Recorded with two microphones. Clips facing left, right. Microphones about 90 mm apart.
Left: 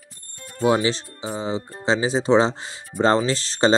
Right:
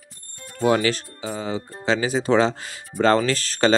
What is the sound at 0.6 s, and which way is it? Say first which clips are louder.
Speech: even; 15° left (ahead or behind).